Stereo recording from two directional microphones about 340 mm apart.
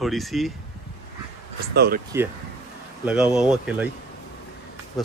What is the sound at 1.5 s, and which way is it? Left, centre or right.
Speech, right.